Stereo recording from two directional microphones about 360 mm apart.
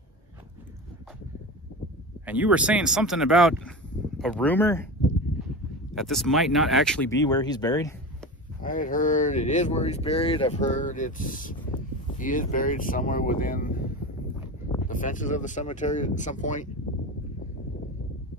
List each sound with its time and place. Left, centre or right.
2.2 s speech: centre
5.9 s speech: centre
8.6 s speech: left
14.9 s speech: left